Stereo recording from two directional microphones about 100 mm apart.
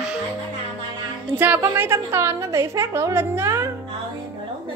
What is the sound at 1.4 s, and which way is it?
A woman's voice, 20° right (ahead or behind).